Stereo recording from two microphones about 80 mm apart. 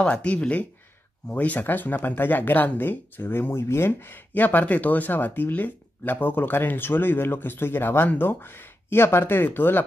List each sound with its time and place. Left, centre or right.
0.0 s speech: centre